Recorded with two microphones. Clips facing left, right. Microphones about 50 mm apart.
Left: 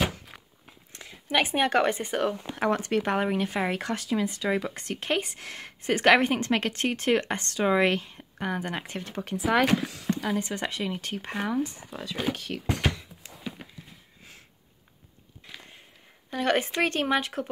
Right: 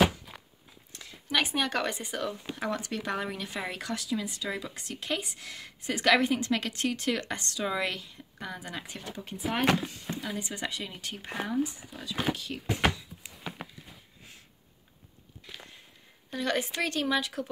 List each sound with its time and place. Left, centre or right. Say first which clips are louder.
0.9 s speech: left 3 dB; left
9.2 s speech: left 5 dB; left
10.1 s speech: left 7 dB; left
16.3 s speech: left 5 dB; left